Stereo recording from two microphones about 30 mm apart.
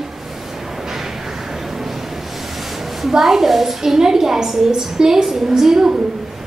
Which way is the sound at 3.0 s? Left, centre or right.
Centre.